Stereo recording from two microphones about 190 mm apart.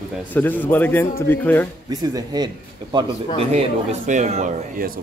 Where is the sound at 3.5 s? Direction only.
40° right (ahead or behind).